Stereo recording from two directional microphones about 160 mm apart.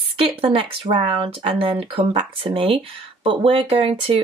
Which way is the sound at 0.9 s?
30° right (ahead or behind).